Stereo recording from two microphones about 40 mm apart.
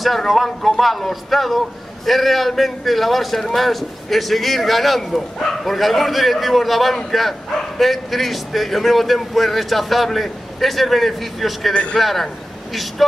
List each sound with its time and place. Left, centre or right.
0.0 s a man's voice: centre
11.7 s a man's voice: left
12.0 s a man's voice: centre